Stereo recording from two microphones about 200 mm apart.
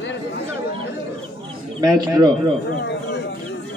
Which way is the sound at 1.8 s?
20° right (ahead or behind).